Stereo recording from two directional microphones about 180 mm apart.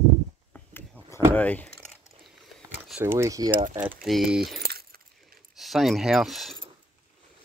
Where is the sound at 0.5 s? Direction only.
10° left (ahead or behind).